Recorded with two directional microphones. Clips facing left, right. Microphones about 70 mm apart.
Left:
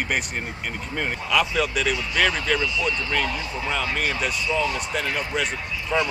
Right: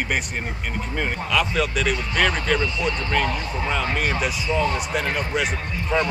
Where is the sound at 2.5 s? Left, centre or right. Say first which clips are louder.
Right 1 dB; right.